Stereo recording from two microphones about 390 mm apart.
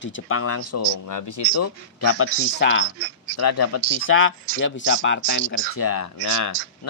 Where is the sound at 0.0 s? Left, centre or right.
Left.